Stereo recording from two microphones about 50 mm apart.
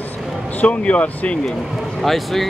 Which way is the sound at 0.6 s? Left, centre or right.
Left.